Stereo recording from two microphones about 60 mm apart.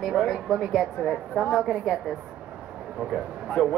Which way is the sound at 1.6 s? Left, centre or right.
Centre.